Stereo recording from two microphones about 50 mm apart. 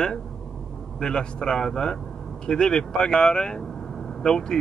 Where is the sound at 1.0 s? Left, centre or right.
Centre.